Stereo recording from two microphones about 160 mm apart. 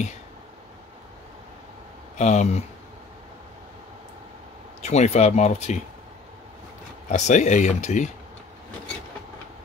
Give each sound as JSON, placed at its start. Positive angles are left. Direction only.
{"t": 2.1, "sound": "speech", "side_deg": 45}
{"t": 4.8, "sound": "speech", "side_deg": 45}
{"t": 7.1, "sound": "speech", "side_deg": 45}